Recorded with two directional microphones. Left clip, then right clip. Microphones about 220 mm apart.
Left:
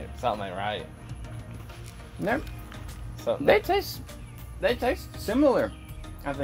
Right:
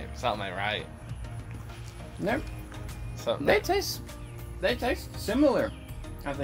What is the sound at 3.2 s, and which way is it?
Speech, 10° right (ahead or behind).